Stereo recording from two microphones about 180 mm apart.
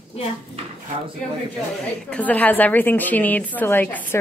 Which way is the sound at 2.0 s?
5° left (ahead or behind).